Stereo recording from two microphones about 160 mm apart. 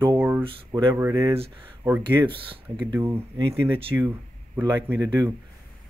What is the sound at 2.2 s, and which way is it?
Speech, 35° right (ahead or behind).